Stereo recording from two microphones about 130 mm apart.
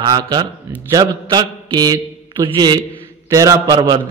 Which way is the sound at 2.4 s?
35° right (ahead or behind).